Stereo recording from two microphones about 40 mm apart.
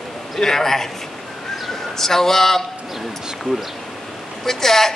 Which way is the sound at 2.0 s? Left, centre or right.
Centre.